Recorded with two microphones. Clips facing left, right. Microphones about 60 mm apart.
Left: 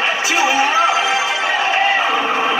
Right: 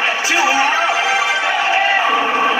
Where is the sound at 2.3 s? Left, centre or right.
Centre.